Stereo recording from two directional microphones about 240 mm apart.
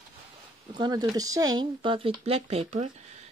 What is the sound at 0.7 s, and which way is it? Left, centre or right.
Speech, centre.